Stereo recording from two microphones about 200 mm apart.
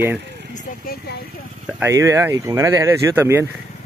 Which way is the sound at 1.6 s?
10° right (ahead or behind).